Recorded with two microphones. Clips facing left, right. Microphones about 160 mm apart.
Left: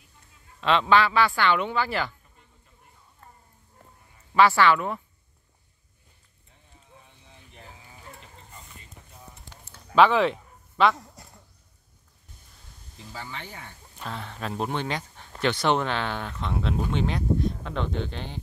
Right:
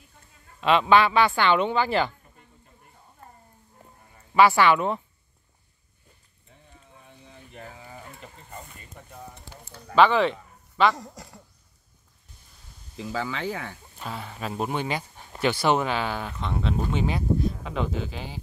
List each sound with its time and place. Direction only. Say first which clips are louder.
0.6 s speech: right 2 dB; 10° right (ahead or behind)
4.3 s speech: right 1 dB; 15° right (ahead or behind)
6.7 s a sound: right 2 dB; 60° right (ahead or behind)
9.9 s speech: even; centre (ahead or behind)
11.2 s a sound: right 6 dB; 90° right
12.9 s speech: right 9 dB; 90° right
13.9 s speech: left 1 dB; 5° right (ahead or behind)